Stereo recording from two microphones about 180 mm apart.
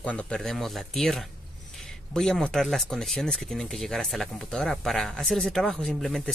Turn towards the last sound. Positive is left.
turn(degrees=0)  # may be behind; listen again after turning